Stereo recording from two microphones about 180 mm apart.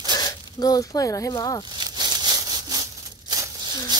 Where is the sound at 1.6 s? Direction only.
25° right (ahead or behind).